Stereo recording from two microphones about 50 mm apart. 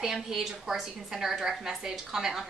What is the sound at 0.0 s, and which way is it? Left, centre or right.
A woman's voice, centre.